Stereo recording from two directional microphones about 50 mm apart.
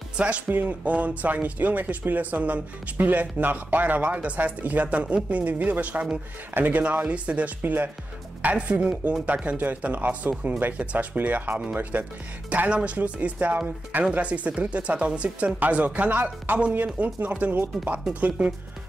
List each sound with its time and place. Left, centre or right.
0.5 s speech: right
11.1 s speech: right